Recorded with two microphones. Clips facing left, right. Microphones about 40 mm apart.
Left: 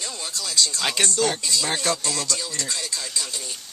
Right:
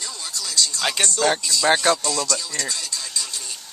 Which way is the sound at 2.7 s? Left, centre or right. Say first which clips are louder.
Even; left.